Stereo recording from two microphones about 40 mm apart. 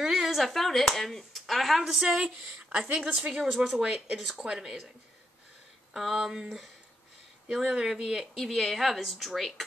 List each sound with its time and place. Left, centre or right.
0.0 s speech: centre
2.0 s speech: centre
2.7 s a woman's voice: right
3.2 s a woman's voice: right
5.9 s speech: centre
6.3 s a woman's voice: centre
8.4 s a woman's voice: centre